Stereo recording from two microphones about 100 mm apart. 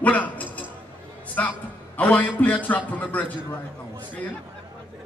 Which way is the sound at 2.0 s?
15° left (ahead or behind).